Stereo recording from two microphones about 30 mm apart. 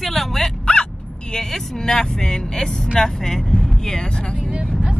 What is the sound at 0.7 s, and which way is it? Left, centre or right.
Vehicle, left.